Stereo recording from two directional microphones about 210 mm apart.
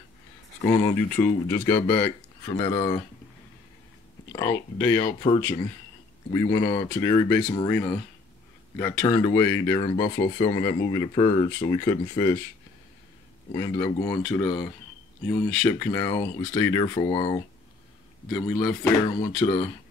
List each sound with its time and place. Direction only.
0.7 s speech: 10° left (ahead or behind)
4.4 s speech: 10° left (ahead or behind)
5.2 s speech: 35° left (ahead or behind)
6.3 s speech: 15° left (ahead or behind)
9.0 s speech: 15° left (ahead or behind)
13.5 s speech: 15° left (ahead or behind)